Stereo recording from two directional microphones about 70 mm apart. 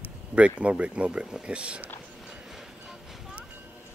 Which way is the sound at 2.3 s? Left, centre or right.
Centre.